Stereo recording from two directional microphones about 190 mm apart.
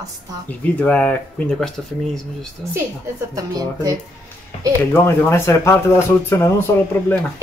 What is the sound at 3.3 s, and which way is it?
Speech, 20° right (ahead or behind).